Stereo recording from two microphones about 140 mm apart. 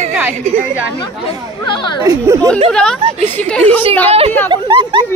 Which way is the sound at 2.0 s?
20° right (ahead or behind).